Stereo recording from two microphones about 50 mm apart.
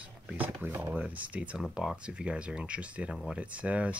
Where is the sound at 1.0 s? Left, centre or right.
Right.